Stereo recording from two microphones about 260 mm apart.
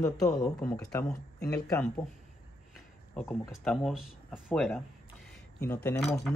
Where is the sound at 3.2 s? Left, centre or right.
Centre.